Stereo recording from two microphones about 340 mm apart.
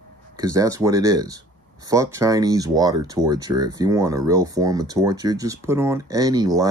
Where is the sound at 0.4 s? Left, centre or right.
Centre.